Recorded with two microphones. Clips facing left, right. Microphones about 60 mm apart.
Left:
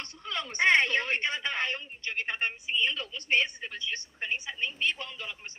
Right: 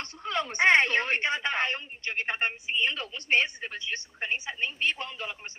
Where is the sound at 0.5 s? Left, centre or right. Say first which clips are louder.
Right 2 dB; right.